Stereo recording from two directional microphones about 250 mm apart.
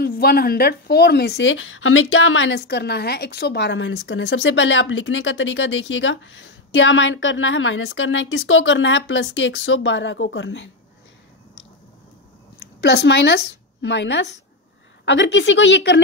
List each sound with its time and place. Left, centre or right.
0.0 s a woman's voice: left
12.5 s a woman's voice: left